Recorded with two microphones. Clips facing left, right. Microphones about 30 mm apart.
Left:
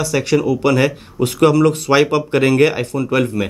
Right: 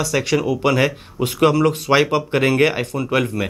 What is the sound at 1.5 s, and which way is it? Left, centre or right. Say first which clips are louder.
Speech: left 3 dB; right.